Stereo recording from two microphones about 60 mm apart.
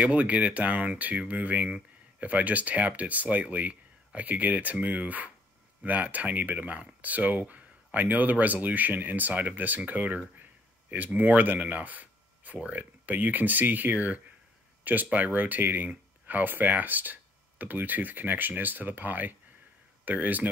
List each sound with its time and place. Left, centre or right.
0.0 s speech: right